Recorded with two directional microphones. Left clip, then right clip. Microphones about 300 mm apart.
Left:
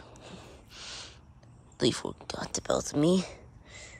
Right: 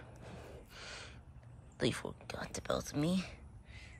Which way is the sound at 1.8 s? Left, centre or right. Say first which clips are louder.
Left 8 dB; centre.